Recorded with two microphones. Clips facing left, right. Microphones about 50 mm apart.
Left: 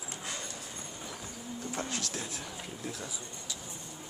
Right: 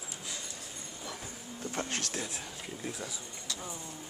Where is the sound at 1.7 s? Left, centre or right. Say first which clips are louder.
Right 2 dB; right.